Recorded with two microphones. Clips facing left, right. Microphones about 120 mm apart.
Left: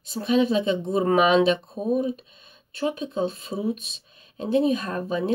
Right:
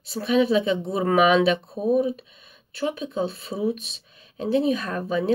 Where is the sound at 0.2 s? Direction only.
35° left (ahead or behind).